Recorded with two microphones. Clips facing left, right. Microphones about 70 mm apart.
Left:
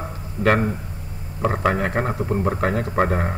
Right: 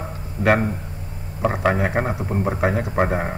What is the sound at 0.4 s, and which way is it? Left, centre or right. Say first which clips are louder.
A man's voice: even; centre.